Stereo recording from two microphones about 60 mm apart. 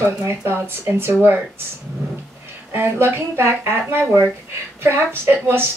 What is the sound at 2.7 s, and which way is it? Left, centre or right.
Speech, right.